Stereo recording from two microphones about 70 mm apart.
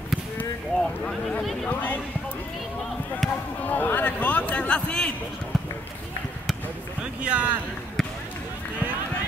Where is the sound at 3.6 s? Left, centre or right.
Left.